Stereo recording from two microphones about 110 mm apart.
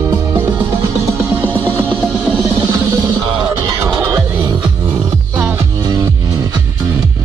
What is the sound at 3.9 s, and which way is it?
Music, 35° right (ahead or behind).